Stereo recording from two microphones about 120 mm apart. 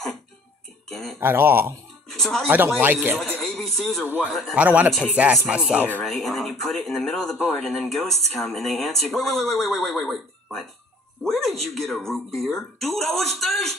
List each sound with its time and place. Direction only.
1.2 s speech: 20° right (ahead or behind)
2.0 s a sound: 5° left (ahead or behind)
2.8 s speech: 15° right (ahead or behind)
3.3 s a sound: centre (ahead or behind)
4.3 s speech: centre (ahead or behind)
4.6 s speech: 15° right (ahead or behind)
6.0 s speech: 5° left (ahead or behind)
11.2 s music: centre (ahead or behind)
11.7 s speech: 5° left (ahead or behind)